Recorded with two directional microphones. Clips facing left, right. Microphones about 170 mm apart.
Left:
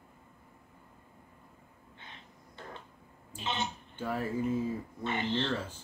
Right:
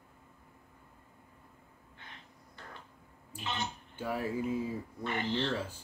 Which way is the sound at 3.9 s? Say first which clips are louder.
Left 1 dB; 10° right (ahead or behind).